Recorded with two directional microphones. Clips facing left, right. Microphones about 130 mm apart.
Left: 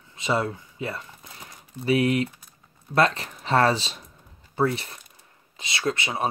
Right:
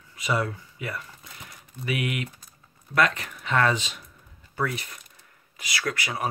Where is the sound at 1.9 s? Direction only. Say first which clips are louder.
Left 8 dB; 35° left (ahead or behind).